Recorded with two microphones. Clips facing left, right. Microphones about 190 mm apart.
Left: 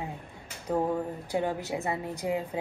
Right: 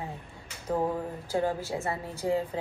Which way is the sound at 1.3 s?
20° left (ahead or behind).